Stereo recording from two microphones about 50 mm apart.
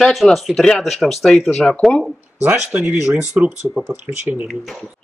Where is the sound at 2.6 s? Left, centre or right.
Right.